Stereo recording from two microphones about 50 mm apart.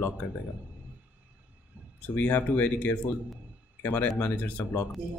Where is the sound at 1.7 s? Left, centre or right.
Right.